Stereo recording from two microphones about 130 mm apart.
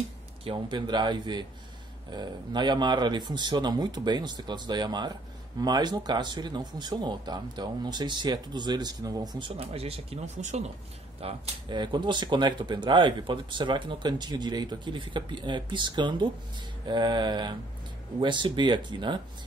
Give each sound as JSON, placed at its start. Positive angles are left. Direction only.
{"t": 0.5, "sound": "speech", "side_deg": -35}
{"t": 9.6, "sound": "speech", "side_deg": -50}
{"t": 11.1, "sound": "speech", "side_deg": -40}